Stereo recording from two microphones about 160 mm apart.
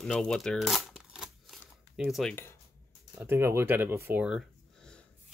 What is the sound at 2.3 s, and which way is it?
Speech, 15° left (ahead or behind).